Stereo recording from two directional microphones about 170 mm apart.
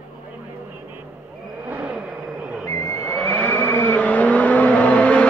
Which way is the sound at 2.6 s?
20° left (ahead or behind).